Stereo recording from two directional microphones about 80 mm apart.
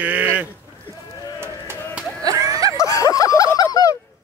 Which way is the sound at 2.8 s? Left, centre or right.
Left.